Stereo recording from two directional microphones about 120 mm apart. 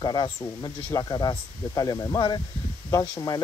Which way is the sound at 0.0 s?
35° left (ahead or behind).